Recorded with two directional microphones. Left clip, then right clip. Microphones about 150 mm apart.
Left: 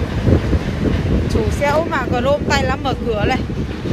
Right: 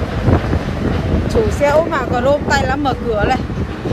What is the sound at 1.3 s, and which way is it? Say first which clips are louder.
Speech: right 4 dB; 10° right (ahead or behind).